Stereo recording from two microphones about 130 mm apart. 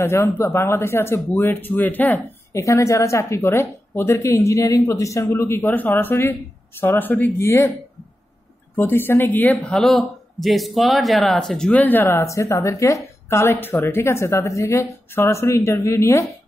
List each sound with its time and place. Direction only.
0.0 s speech: 20° left (ahead or behind)
8.7 s speech: 15° left (ahead or behind)